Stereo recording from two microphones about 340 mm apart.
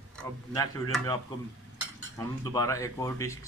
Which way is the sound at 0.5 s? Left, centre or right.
Centre.